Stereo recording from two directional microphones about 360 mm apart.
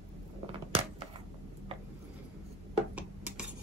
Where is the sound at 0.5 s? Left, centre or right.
Centre.